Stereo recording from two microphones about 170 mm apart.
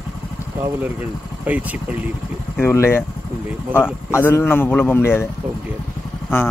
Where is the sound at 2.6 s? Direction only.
15° left (ahead or behind).